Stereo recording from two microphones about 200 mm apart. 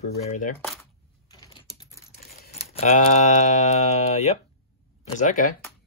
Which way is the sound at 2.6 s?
35° left (ahead or behind).